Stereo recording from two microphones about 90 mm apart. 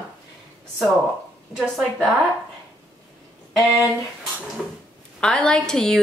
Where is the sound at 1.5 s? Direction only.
5° right (ahead or behind).